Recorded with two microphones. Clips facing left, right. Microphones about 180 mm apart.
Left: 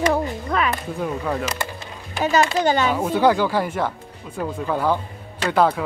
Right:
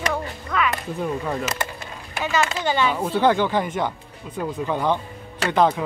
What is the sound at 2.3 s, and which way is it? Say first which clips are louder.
Speech: left 5 dB; 40° left (ahead or behind).